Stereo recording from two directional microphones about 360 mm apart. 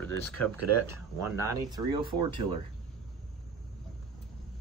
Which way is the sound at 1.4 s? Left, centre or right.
Centre.